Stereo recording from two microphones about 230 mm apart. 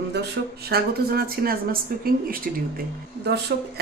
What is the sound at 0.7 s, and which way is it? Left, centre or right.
Speech, right.